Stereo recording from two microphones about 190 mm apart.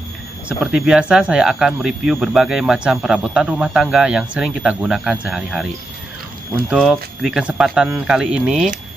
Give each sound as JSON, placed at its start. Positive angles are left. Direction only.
{"t": 0.5, "sound": "speech", "side_deg": -5}
{"t": 6.7, "sound": "speech", "side_deg": -5}